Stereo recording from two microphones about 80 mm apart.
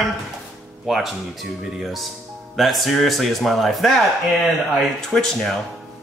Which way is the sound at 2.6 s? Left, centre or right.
Centre.